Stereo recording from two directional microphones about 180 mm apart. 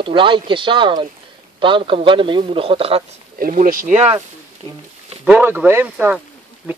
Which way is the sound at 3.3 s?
50° right (ahead or behind).